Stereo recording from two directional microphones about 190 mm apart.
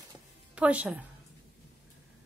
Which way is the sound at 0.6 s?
5° right (ahead or behind).